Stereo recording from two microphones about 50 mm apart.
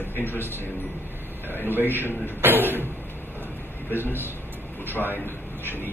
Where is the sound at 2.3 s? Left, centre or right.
Right.